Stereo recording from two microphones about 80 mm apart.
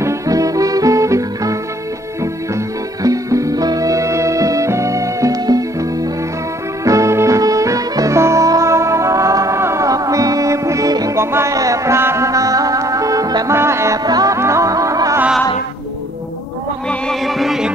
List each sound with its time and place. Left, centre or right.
0.0 s music: right
3.0 s music: right
11.1 s music: right
13.5 s music: right
14.0 s music: right
14.3 s music: right
17.1 s music: centre